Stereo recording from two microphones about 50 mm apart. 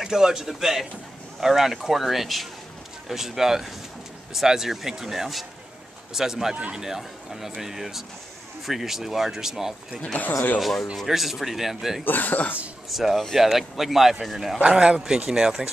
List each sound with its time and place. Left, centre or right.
0.0 s speech: centre
10.1 s speech: left
11.1 s speech: centre
12.0 s speech: left
12.9 s speech: centre
14.6 s speech: centre